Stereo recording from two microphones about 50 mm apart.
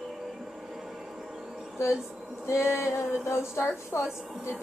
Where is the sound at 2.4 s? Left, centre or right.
Left.